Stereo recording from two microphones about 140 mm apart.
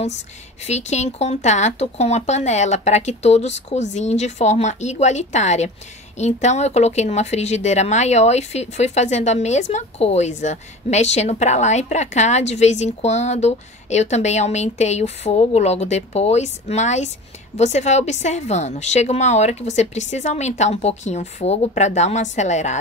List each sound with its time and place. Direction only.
0.7 s a woman's voice: 55° left (ahead or behind)